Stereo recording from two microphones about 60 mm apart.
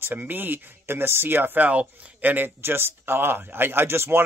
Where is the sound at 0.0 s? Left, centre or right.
Right.